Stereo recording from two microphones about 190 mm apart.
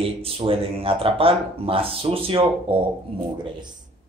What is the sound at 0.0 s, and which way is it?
Speech, 30° right (ahead or behind).